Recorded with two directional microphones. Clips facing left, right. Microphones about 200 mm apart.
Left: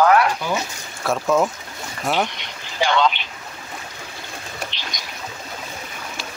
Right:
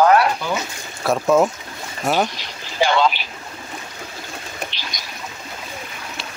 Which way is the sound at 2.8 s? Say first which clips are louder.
Right 2 dB; 10° right (ahead or behind).